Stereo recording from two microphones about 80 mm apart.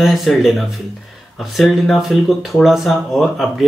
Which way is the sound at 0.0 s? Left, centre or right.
Centre.